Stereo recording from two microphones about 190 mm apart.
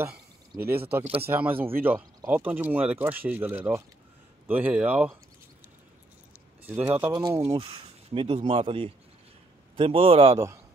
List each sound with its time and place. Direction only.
0.0 s a sound: 10° right (ahead or behind)
1.2 s speech: 10° right (ahead or behind)
6.7 s speech: 10° right (ahead or behind); by 10.4 s 30° right (ahead or behind)